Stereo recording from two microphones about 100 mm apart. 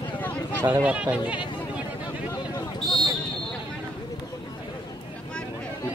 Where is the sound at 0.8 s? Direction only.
15° right (ahead or behind).